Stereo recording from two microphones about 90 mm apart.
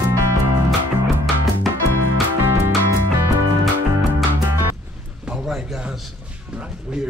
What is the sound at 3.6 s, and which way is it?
Music, centre (ahead or behind).